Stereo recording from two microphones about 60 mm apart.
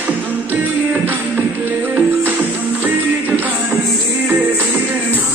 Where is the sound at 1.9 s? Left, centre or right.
Right.